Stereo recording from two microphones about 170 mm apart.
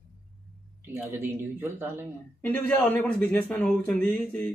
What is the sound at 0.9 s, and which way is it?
Speech, 15° right (ahead or behind).